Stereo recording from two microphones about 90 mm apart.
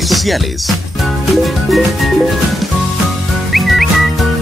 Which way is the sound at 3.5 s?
Centre (ahead or behind).